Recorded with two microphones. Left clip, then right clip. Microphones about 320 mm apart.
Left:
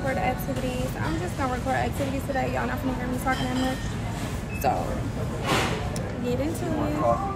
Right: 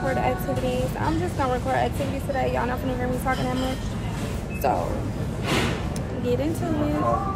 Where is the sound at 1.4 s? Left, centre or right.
Centre.